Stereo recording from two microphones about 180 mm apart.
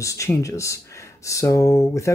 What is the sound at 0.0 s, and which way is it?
Speech, 15° left (ahead or behind).